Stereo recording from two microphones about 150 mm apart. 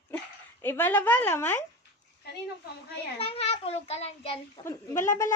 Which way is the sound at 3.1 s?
40° left (ahead or behind).